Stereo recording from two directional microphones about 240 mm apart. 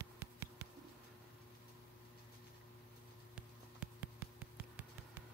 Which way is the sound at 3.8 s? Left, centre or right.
Centre.